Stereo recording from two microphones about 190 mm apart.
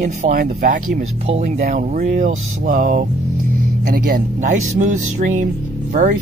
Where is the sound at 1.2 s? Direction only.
35° right (ahead or behind).